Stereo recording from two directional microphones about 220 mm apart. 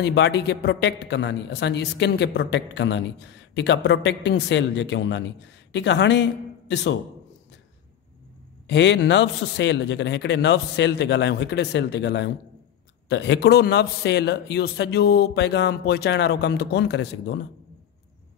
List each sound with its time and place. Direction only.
0.0 s a man's voice: 50° left (ahead or behind)
8.6 s a man's voice: 50° left (ahead or behind)